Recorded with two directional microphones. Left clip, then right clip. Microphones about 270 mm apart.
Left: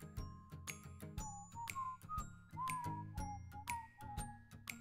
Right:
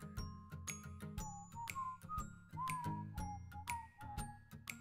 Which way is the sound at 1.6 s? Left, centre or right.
Centre.